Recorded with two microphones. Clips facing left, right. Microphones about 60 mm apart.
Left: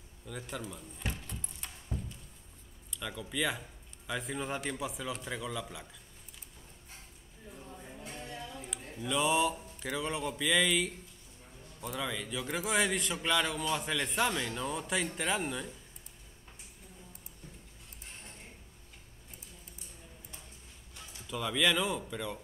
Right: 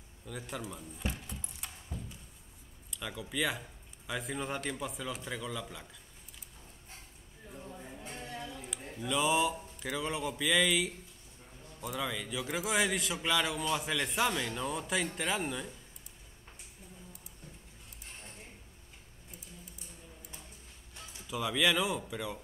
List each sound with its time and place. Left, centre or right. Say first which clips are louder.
0.3 s a man's voice: even; centre
1.1 s keys jangling: even; centre
2.9 s a man's voice: even; centre
7.6 s music: right 2 dB; centre
8.1 s a sound: right 1 dB; right
9.0 s a man's voice: even; centre
21.3 s a man's voice: even; centre